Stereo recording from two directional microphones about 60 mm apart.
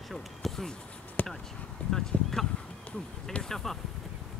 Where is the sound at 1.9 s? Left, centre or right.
Centre.